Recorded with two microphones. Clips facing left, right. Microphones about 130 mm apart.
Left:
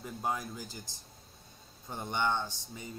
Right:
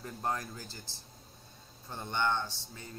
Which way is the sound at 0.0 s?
10° left (ahead or behind).